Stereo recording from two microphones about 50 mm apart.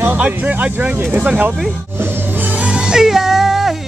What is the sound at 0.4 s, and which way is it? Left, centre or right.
Speech, right.